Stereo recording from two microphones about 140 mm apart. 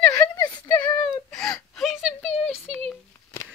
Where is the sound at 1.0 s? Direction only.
5° left (ahead or behind).